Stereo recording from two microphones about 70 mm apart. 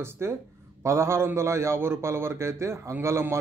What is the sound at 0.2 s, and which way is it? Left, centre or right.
A man's voice, right.